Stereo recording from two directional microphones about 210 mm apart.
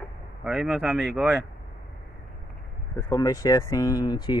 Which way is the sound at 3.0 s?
15° left (ahead or behind).